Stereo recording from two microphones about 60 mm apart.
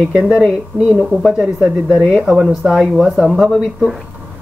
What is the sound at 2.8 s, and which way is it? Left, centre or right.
Speech, centre.